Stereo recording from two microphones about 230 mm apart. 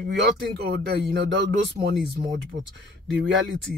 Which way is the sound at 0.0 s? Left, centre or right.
Right.